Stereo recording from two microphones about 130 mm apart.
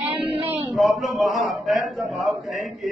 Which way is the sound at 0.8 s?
Centre (ahead or behind).